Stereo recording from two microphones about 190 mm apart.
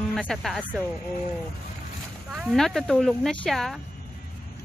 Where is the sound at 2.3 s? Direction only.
5° right (ahead or behind).